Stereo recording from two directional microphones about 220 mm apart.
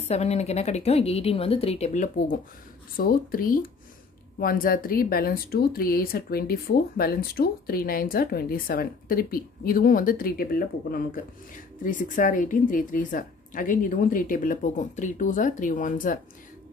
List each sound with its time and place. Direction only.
0.0 s a woman's voice: 30° left (ahead or behind)